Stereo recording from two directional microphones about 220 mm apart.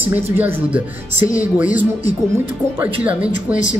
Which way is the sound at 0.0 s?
10° right (ahead or behind).